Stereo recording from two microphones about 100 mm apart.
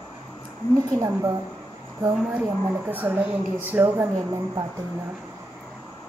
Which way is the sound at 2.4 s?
15° right (ahead or behind).